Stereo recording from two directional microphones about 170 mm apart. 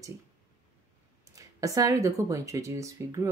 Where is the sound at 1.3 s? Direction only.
20° right (ahead or behind).